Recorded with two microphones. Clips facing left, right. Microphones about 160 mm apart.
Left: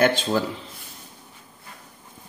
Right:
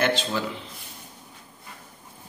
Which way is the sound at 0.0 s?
45° left (ahead or behind).